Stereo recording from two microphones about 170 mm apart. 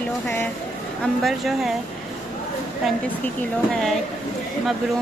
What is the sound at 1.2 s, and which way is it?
Speech, centre (ahead or behind).